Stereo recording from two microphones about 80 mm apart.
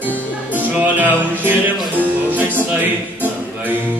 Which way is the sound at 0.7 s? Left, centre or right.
Right.